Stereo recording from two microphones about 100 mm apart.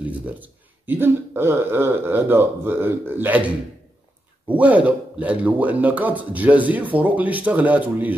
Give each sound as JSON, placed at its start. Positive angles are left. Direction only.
{"t": 0.2, "sound": "a man's voice", "side_deg": -20}